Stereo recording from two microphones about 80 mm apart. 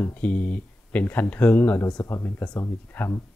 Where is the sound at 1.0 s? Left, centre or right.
Left.